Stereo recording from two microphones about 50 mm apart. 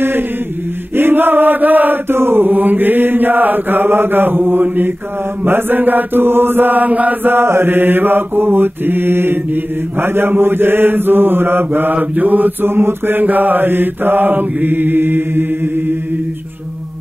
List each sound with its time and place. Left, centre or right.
0.9 s chant: right
2.0 s chant: right
7.3 s mantra: right